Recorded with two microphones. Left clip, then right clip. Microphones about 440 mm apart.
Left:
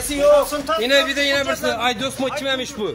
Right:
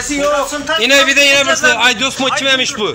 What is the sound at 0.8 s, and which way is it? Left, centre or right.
A man's voice, left.